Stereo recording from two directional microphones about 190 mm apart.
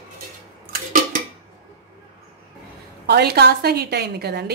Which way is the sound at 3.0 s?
55° right (ahead or behind).